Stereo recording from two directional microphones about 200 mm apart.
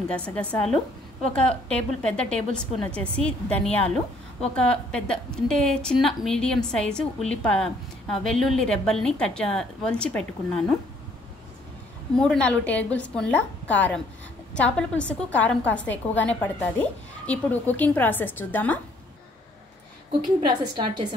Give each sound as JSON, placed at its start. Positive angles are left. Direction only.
{"t": 0.1, "sound": "a woman's voice", "side_deg": 5}
{"t": 12.2, "sound": "a woman's voice", "side_deg": 5}
{"t": 20.1, "sound": "a woman's voice", "side_deg": -25}